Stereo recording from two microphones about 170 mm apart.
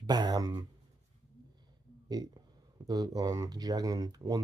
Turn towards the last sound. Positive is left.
turn(degrees=-20)  # may be behind; listen again after turning